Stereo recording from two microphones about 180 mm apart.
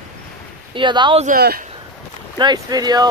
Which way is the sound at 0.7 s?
25° right (ahead or behind).